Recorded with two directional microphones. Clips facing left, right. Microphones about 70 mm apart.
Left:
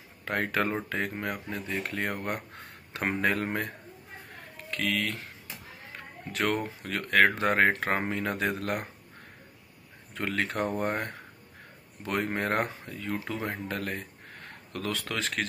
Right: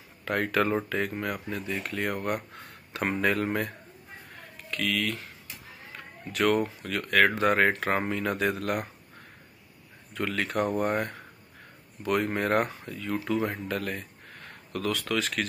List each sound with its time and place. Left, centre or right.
0.2 s speech: left
4.6 s speech: left
6.3 s speech: left
10.1 s speech: left